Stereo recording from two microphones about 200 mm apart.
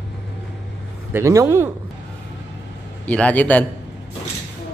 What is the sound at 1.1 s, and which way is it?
Speech, 15° right (ahead or behind).